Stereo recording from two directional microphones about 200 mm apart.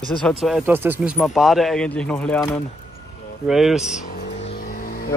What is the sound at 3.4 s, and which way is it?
Speech, centre (ahead or behind).